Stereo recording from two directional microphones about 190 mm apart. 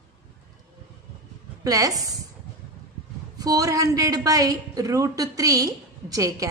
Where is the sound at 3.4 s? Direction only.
20° right (ahead or behind).